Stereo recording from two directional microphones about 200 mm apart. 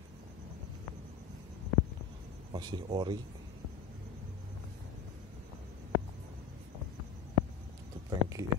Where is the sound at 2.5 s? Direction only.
20° right (ahead or behind).